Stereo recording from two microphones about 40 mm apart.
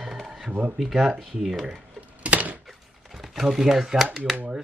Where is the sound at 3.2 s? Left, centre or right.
Centre.